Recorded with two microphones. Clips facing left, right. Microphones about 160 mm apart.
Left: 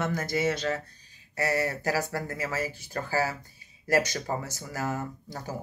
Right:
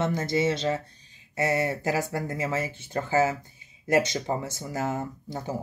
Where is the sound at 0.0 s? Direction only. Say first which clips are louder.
Right 3 dB; 25° right (ahead or behind).